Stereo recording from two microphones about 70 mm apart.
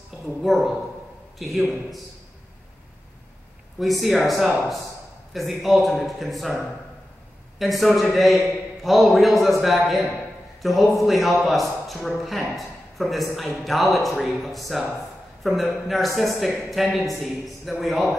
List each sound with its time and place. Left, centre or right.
0.4 s a man's voice: centre
3.8 s a man's voice: centre